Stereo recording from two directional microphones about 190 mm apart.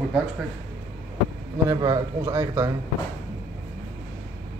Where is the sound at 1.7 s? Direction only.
20° right (ahead or behind).